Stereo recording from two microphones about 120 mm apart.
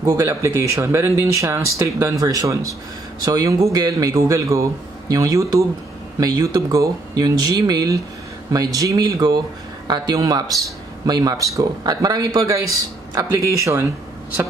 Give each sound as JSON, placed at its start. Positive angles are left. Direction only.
{"t": 0.0, "sound": "speech", "side_deg": -25}